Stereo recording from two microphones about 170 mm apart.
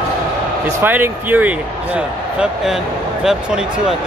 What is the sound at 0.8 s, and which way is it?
Speech, 10° right (ahead or behind).